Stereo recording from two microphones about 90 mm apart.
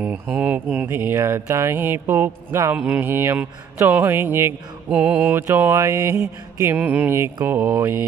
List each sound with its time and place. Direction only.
0.0 s mantra: 15° right (ahead or behind)
2.8 s mantra: 15° right (ahead or behind)
3.1 s mantra: 25° right (ahead or behind)
5.3 s mantra: 25° right (ahead or behind)
6.6 s mantra: 20° right (ahead or behind)